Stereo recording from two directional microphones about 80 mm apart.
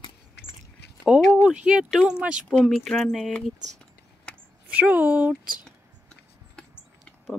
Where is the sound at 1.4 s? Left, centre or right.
Centre.